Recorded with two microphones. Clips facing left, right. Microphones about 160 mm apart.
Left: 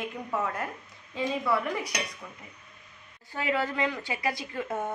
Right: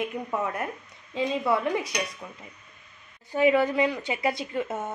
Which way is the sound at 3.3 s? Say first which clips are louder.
Right 8 dB; 15° right (ahead or behind).